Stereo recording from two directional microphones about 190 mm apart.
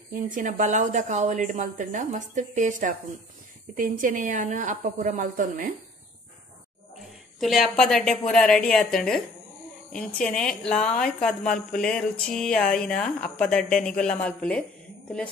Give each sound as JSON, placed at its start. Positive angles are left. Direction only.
{"t": 0.1, "sound": "a woman's voice", "side_deg": -45}
{"t": 7.3, "sound": "speech", "side_deg": 0}